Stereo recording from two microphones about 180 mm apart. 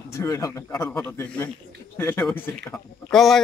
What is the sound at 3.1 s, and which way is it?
Speech, centre (ahead or behind).